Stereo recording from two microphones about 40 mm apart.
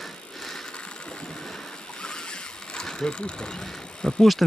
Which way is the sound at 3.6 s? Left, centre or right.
Centre.